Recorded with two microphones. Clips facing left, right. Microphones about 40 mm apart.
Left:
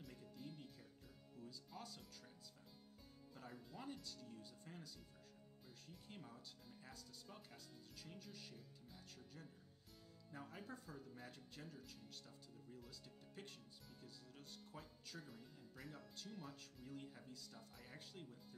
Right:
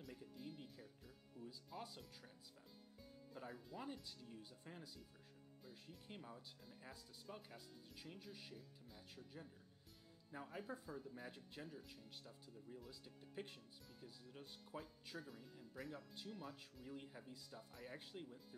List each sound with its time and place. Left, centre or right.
0.0 s music: centre
1.7 s speech: centre
3.3 s speech: centre
16.9 s speech: centre